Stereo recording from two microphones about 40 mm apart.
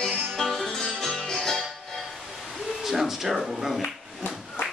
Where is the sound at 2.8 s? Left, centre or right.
Centre.